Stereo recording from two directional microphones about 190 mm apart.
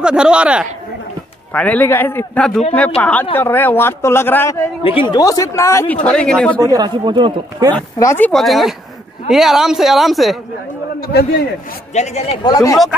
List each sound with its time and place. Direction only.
0.0 s a woman's voice: 5° right (ahead or behind)
1.5 s speech: 5° left (ahead or behind)
6.6 s speech: 20° right (ahead or behind)
7.7 s speech: 10° left (ahead or behind)
8.3 s a woman's voice: centre (ahead or behind)
11.0 s a man's voice: 60° left (ahead or behind)
11.9 s speech: 35° left (ahead or behind)
12.4 s speech: 20° left (ahead or behind)